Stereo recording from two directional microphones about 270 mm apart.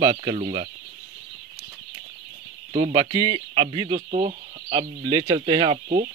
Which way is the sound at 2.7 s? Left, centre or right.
Centre.